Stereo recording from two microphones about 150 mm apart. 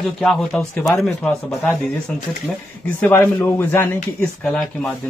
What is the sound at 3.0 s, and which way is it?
Speech, 10° left (ahead or behind).